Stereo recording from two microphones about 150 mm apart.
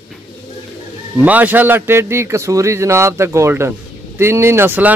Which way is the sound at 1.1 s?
10° right (ahead or behind).